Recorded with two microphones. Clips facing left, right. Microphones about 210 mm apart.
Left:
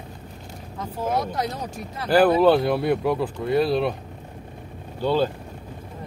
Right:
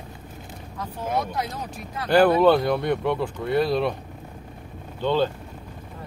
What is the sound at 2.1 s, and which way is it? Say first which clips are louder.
Speech: even; 5° left (ahead or behind).